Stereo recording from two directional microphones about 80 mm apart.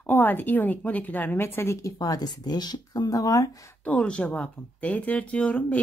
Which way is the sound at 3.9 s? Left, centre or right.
Centre.